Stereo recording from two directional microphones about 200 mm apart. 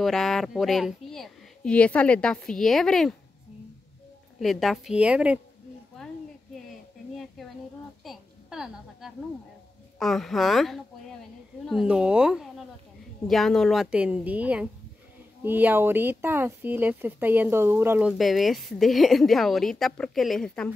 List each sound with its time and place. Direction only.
0.0 s speech: centre (ahead or behind)
4.4 s speech: centre (ahead or behind)
7.2 s a sound: centre (ahead or behind)
9.9 s speech: centre (ahead or behind)